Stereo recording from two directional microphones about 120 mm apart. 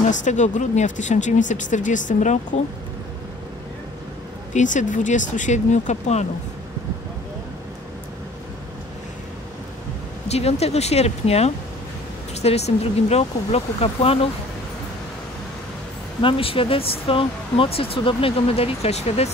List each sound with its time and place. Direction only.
0.1 s speech: 90° left
4.6 s speech: 90° left; by 6.2 s 75° left (ahead or behind)
10.2 s speech: 60° left (ahead or behind)
16.2 s speech: 50° left (ahead or behind)